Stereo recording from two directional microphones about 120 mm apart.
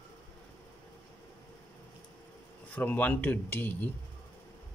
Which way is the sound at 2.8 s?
15° left (ahead or behind).